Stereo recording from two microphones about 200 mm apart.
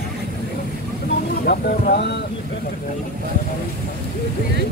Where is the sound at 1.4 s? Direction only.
50° left (ahead or behind).